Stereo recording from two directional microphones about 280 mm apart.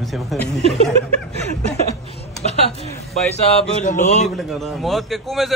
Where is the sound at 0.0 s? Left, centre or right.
Centre.